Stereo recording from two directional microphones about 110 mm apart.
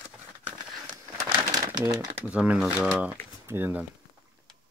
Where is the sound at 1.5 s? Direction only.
35° right (ahead or behind).